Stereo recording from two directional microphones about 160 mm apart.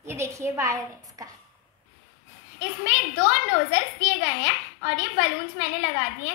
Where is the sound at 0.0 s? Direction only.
15° right (ahead or behind).